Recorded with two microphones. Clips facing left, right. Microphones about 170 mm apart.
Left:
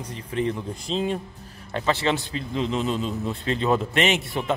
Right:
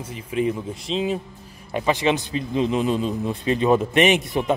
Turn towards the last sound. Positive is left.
turn(degrees=-15)  # may be behind; listen again after turning